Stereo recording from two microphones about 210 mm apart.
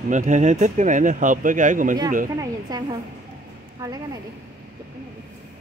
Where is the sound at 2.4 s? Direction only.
20° right (ahead or behind).